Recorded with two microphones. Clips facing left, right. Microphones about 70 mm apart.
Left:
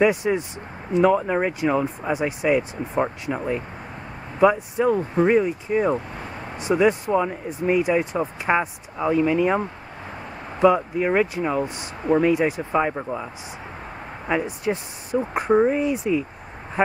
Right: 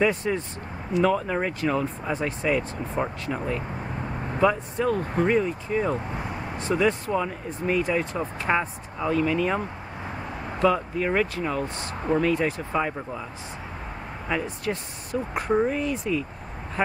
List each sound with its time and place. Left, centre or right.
0.0 s speech: centre